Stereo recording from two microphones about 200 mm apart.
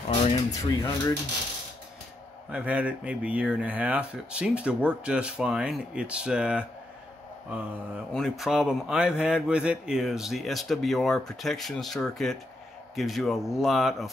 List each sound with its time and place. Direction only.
0.5 s speech: 15° left (ahead or behind)
2.5 s speech: 5° right (ahead or behind)